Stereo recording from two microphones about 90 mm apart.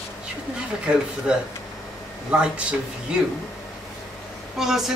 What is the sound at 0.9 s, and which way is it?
Speech, 15° right (ahead or behind).